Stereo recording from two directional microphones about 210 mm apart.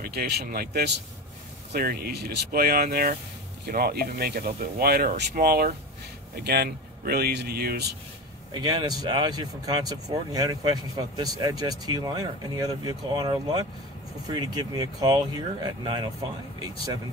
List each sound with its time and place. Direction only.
0.0 s speech: 50° right (ahead or behind)
8.5 s speech: 20° right (ahead or behind)